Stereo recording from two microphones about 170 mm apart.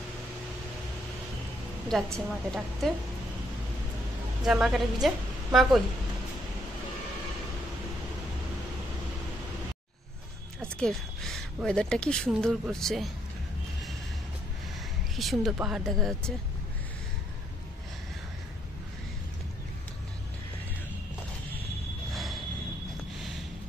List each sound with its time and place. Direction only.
2.1 s speech: centre (ahead or behind)
4.5 s speech: 5° right (ahead or behind)
10.6 s speech: 5° left (ahead or behind)
15.1 s speech: centre (ahead or behind)
22.1 s a sound: centre (ahead or behind)